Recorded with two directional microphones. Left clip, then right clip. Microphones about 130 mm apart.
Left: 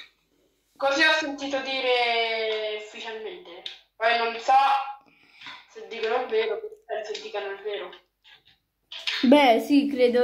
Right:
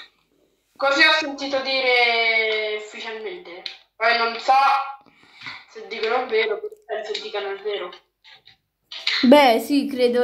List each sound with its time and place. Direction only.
0.7 s a woman's voice: 25° right (ahead or behind)
9.7 s a woman's voice: 10° right (ahead or behind)